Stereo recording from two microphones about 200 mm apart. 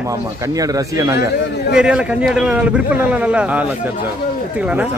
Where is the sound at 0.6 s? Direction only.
15° right (ahead or behind).